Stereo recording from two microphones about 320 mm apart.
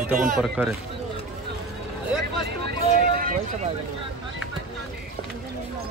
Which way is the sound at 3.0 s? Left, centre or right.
Right.